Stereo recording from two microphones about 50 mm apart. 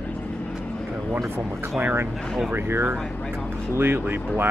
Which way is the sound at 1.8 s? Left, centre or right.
Right.